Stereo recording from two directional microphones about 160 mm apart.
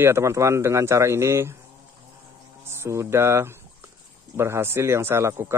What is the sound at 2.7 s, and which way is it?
Speech, 15° right (ahead or behind).